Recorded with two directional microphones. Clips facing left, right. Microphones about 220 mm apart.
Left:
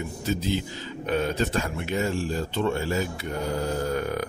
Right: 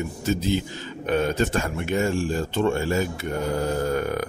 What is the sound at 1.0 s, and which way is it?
A man's voice, 50° right (ahead or behind).